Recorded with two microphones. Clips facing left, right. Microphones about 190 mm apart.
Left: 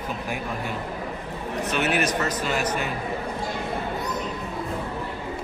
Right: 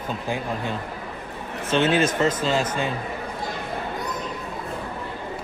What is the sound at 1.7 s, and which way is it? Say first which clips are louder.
Speech: right 5 dB; 25° right (ahead or behind).